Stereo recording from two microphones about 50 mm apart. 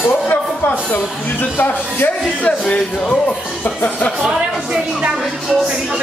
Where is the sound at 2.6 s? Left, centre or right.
Left.